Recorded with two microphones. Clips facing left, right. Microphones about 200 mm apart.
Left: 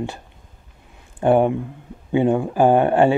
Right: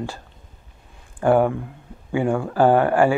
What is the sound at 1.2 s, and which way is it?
Speech, 20° left (ahead or behind).